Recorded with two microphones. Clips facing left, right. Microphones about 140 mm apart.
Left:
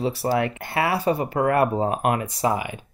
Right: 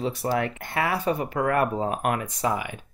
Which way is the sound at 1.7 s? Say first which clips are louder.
Left 3 dB; 25° left (ahead or behind).